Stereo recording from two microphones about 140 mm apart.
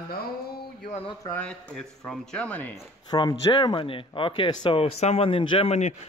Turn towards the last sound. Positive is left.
turn(degrees=50)  # may be behind; listen again after turning